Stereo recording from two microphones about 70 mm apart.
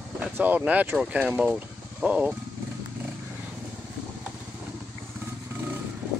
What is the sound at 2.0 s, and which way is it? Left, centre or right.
Speech, right.